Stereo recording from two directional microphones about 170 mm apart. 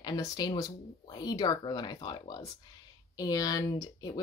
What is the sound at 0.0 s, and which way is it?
A woman's voice, 25° left (ahead or behind).